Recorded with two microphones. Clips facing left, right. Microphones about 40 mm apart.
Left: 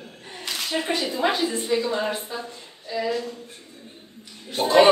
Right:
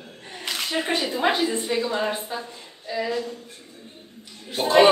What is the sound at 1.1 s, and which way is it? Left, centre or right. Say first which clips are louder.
A woman's voice: right 1 dB; centre.